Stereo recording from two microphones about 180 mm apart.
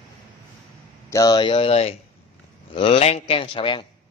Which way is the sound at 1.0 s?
20° left (ahead or behind).